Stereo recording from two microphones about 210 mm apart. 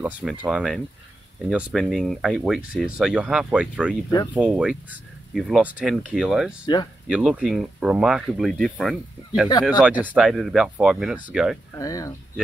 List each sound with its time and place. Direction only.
0.0 s speech: 5° right (ahead or behind)
6.6 s speech: 20° left (ahead or behind)
7.1 s speech: 5° right (ahead or behind)
11.8 s speech: 15° left (ahead or behind)